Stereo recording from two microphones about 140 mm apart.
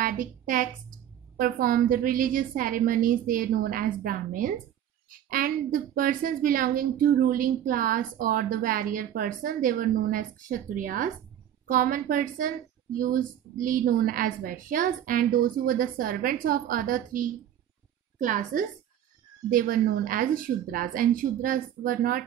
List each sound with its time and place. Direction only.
0.0 s a woman's voice: 70° right (ahead or behind)
19.5 s a woman's voice: 85° right